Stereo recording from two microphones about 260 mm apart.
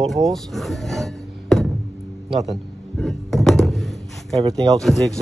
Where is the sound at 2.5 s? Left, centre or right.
Centre.